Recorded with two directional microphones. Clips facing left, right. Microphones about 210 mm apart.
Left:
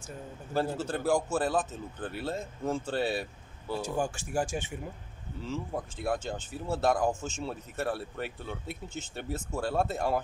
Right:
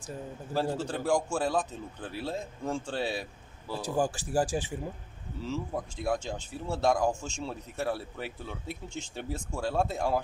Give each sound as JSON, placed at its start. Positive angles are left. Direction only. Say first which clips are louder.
{"t": 0.6, "sound": "speech", "louder": "even", "side_deg": 5}
{"t": 3.8, "sound": "speech", "louder": "right 5 dB", "side_deg": -35}
{"t": 5.4, "sound": "speech", "louder": "right 1 dB", "side_deg": 0}